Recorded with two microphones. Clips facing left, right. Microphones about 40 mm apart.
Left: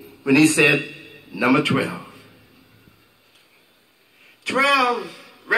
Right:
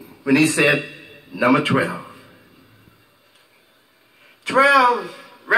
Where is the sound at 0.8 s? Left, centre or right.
Right.